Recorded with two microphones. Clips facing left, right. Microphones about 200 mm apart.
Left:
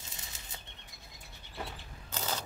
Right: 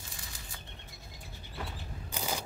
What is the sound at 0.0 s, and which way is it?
Bird flight, 20° left (ahead or behind).